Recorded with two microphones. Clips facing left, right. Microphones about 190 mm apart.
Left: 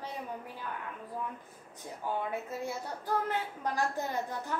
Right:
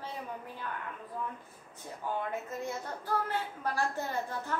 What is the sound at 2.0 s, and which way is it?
Speech, 10° left (ahead or behind).